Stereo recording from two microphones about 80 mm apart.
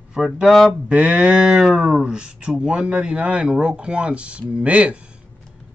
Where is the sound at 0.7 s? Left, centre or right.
Centre.